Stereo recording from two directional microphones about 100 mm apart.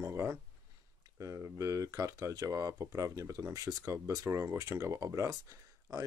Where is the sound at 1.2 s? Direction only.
30° right (ahead or behind).